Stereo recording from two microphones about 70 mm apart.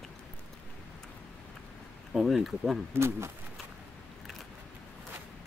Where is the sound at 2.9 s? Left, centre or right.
Right.